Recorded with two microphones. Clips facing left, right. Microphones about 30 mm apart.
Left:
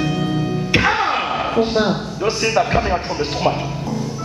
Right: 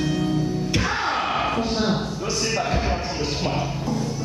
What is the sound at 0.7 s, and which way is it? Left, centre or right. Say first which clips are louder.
Music: left 10 dB; left.